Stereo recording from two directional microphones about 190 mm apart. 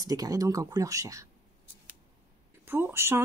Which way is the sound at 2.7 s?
10° right (ahead or behind).